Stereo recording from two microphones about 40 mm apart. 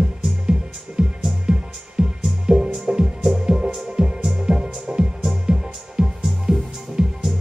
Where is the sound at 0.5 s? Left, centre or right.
Centre.